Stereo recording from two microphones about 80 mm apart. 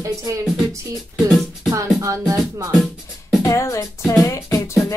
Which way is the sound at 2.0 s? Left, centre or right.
Right.